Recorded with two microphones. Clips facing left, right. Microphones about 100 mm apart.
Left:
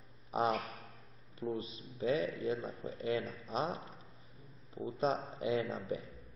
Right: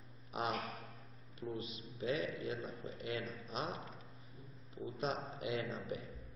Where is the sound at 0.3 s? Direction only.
30° left (ahead or behind).